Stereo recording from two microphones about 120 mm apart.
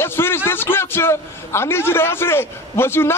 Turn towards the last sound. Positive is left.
turn(degrees=20)  # may be behind; listen again after turning